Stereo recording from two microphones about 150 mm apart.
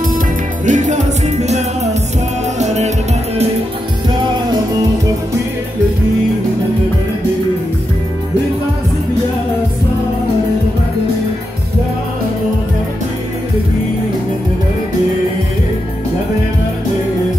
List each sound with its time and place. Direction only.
0.7 s music: 55° right (ahead or behind)
2.6 s music: 50° right (ahead or behind)